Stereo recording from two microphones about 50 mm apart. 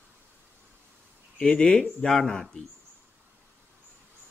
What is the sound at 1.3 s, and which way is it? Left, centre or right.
Speech, centre.